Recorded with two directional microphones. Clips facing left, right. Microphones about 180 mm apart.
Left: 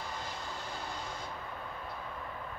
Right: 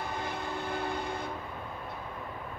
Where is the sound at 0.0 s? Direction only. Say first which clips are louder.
Right 6 dB; 60° right (ahead or behind).